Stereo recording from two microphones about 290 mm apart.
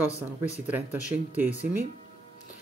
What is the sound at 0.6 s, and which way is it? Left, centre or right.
Speech, centre.